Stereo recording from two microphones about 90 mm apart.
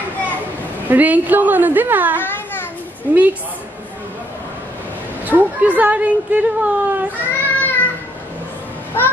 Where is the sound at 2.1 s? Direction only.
25° left (ahead or behind).